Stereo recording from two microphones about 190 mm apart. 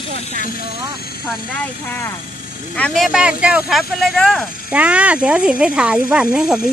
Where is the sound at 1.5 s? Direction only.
10° left (ahead or behind).